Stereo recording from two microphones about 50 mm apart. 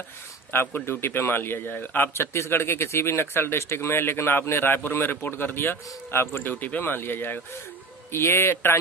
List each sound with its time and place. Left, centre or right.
0.5 s speech: left
2.3 s speech: left
6.8 s a man's voice: left